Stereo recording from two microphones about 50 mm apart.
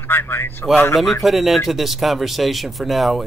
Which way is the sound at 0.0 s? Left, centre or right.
Left.